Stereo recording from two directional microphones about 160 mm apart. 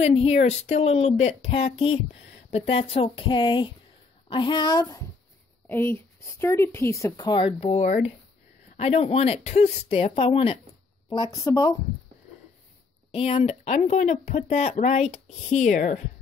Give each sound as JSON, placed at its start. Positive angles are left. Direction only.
{"t": 0.0, "sound": "a woman's voice", "side_deg": 40}
{"t": 5.7, "sound": "a woman's voice", "side_deg": 10}
{"t": 11.1, "sound": "speech", "side_deg": 20}
{"t": 13.1, "sound": "speech", "side_deg": 40}